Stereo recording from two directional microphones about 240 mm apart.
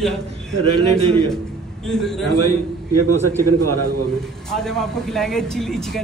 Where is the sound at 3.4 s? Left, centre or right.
Right.